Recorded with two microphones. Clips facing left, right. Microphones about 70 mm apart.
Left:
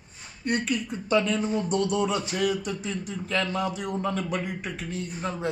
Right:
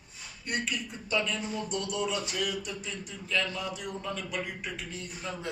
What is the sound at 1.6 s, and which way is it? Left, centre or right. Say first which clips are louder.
Speech: left 9 dB; left.